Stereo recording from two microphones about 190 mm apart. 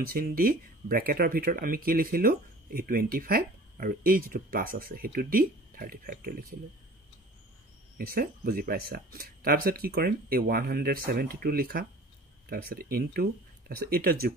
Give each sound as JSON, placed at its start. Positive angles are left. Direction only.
{"t": 0.1, "sound": "speech", "side_deg": -50}
{"t": 8.0, "sound": "speech", "side_deg": -50}